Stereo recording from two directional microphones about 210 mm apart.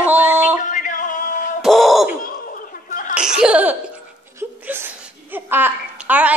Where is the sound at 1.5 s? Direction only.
Centre (ahead or behind).